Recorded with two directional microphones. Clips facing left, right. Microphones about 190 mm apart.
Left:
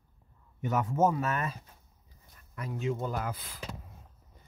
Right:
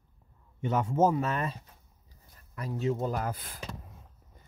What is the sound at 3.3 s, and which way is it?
Speech, 50° right (ahead or behind).